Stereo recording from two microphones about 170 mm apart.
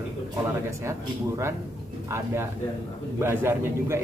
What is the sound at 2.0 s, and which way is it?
A man's voice, 15° right (ahead or behind).